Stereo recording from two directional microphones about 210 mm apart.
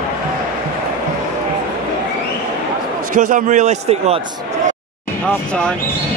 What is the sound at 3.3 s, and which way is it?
Speech, 35° right (ahead or behind).